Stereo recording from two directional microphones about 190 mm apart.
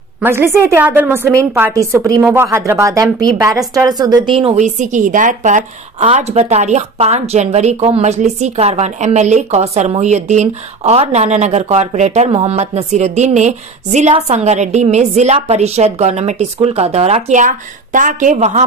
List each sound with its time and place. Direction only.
0.2 s a woman's voice: 10° right (ahead or behind); by 18.7 s 40° right (ahead or behind)